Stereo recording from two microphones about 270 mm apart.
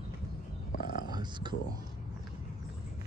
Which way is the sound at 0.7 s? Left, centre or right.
Left.